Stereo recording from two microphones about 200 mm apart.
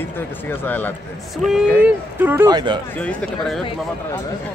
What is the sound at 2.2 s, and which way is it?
Speech, 10° right (ahead or behind).